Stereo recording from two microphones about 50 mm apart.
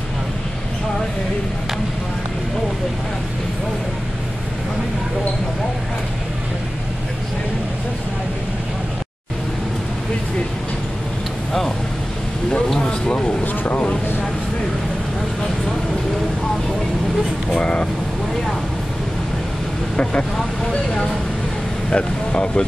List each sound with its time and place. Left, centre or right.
12.4 s a sound: centre
17.6 s vehicle: centre
20.0 s vehicle: left
20.3 s vehicle: centre
21.9 s speech: centre